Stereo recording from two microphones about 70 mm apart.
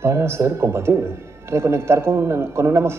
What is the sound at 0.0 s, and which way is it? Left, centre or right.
A man's voice, right.